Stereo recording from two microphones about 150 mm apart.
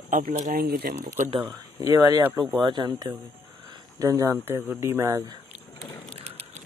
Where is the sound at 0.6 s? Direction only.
90° right.